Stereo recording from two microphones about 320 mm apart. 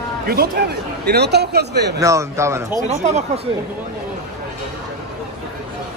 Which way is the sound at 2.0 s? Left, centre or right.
Centre.